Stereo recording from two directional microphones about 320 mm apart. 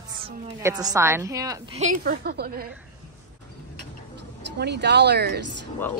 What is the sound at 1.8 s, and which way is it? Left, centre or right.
Speech, right.